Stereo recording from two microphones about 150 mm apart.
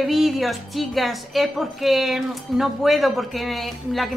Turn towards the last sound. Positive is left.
turn(degrees=0)  # may be behind; listen again after turning